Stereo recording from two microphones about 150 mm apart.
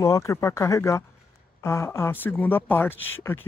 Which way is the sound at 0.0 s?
20° left (ahead or behind).